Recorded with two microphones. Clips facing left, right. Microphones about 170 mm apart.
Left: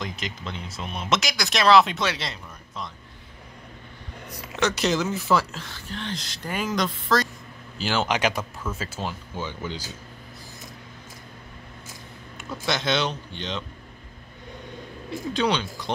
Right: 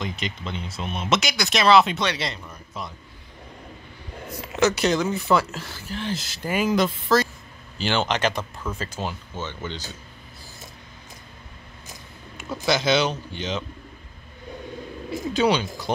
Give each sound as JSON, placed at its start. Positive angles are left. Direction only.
{"t": 0.0, "sound": "speech", "side_deg": 0}
{"t": 4.3, "sound": "a sound", "side_deg": -25}
{"t": 4.6, "sound": "speech", "side_deg": 0}
{"t": 12.4, "sound": "speech", "side_deg": 0}
{"t": 15.0, "sound": "speech", "side_deg": -5}